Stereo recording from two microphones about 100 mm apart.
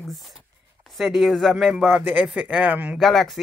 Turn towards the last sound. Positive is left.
turn(degrees=0)  # may be behind; listen again after turning